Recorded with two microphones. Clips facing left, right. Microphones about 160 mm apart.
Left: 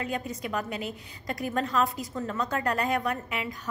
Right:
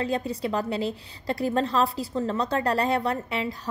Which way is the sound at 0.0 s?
30° right (ahead or behind).